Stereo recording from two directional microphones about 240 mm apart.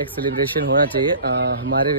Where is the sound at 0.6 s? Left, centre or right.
Right.